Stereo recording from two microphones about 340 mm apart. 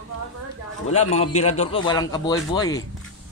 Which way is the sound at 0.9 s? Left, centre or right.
Centre.